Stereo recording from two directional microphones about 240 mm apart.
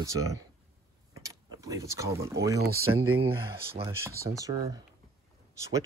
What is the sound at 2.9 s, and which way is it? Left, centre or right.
Speech, right.